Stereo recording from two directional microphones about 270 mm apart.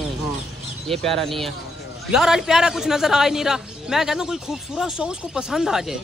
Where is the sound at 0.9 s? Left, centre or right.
Centre.